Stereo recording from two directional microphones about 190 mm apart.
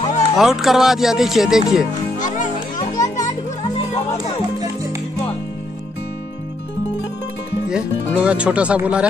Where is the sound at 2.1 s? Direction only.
40° left (ahead or behind).